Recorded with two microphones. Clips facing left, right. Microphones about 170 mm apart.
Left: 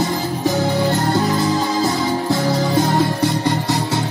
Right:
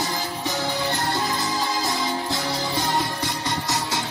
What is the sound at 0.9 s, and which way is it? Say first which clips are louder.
Music: left 8 dB; 35° left (ahead or behind).